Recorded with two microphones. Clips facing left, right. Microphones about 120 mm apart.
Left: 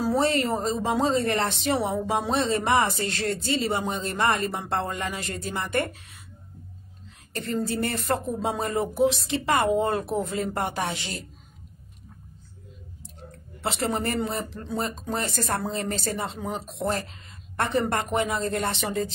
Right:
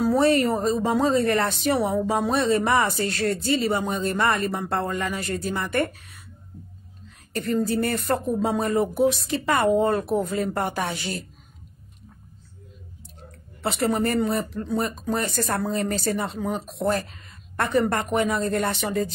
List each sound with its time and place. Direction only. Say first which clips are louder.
0.0 s speech: right 4 dB; 25° left (ahead or behind)
7.3 s speech: right 4 dB; 25° left (ahead or behind)
13.6 s speech: right 4 dB; 25° left (ahead or behind)